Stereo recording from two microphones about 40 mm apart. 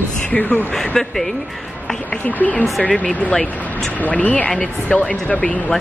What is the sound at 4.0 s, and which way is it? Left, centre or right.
Speech, left.